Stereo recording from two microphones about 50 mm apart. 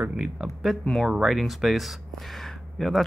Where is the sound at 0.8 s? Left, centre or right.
Centre.